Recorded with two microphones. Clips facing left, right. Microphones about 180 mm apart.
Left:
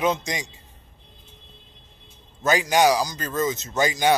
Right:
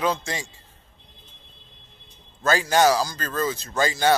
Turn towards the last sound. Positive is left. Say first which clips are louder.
# even
turn(degrees=15)  # may be behind; listen again after turning